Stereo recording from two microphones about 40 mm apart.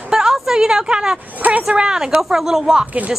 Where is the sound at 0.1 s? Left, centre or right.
Centre.